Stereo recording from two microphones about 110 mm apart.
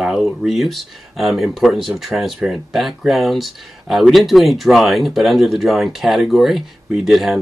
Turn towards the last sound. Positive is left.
turn(degrees=0)  # may be behind; listen again after turning